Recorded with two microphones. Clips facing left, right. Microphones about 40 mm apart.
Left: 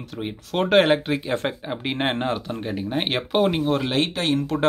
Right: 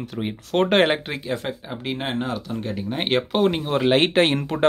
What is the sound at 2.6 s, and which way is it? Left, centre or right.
Speech, centre.